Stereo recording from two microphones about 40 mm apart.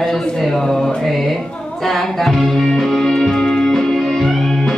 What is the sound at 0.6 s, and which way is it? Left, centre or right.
Music, centre.